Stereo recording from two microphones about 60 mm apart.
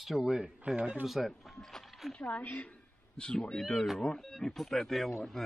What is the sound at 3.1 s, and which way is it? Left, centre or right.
Speech, centre.